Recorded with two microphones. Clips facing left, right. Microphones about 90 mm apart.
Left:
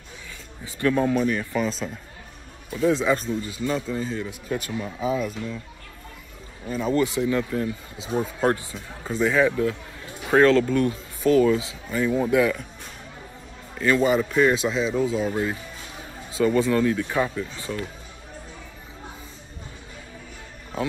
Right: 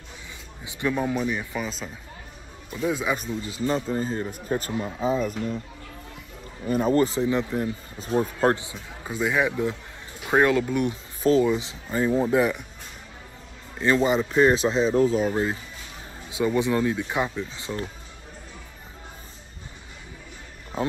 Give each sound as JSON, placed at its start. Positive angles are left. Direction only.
{"t": 0.7, "sound": "speech", "side_deg": -15}
{"t": 2.7, "sound": "speech", "side_deg": -10}
{"t": 3.4, "sound": "speech", "side_deg": -30}
{"t": 6.7, "sound": "speech", "side_deg": -40}
{"t": 8.4, "sound": "speech", "side_deg": -40}
{"t": 9.0, "sound": "speech", "side_deg": -10}
{"t": 11.5, "sound": "speech", "side_deg": -30}
{"t": 13.7, "sound": "speech", "side_deg": -25}
{"t": 15.2, "sound": "speech", "side_deg": -25}